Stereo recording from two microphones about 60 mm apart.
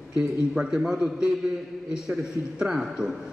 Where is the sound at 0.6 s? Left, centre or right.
Centre.